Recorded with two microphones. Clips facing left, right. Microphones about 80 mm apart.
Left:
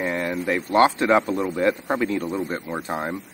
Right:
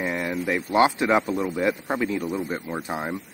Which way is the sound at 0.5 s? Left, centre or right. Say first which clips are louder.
Left 2 dB; centre.